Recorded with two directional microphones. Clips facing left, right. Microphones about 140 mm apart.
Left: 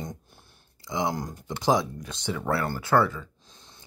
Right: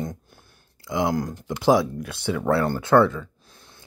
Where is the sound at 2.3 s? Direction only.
20° right (ahead or behind).